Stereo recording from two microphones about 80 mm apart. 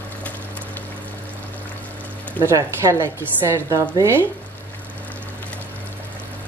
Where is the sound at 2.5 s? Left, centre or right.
Right.